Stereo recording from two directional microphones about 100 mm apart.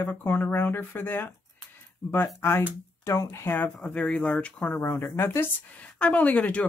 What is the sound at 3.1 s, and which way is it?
Speech, 30° left (ahead or behind).